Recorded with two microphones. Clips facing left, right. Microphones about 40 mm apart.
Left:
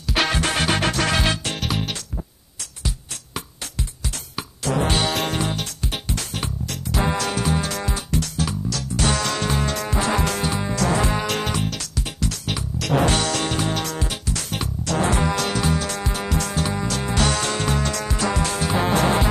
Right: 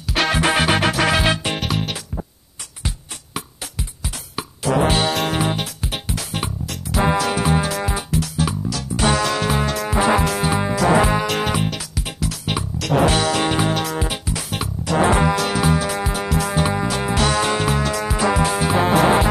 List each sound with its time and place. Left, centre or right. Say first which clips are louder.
0.1 s music: right 2 dB; centre
0.4 s music: right 4 dB; centre
4.4 s music: right 4 dB; centre
5.4 s music: right 4 dB; centre
7.4 s music: right 4 dB; centre
10.5 s music: right 5 dB; right; by 16.5 s centre
16.5 s music: right 4 dB; centre